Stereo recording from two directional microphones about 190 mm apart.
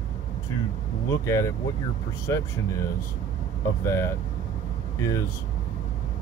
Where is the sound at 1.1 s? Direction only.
15° left (ahead or behind).